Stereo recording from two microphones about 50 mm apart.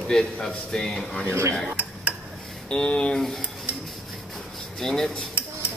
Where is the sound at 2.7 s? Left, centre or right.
Centre.